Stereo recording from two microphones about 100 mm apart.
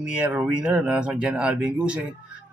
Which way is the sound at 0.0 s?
15° right (ahead or behind).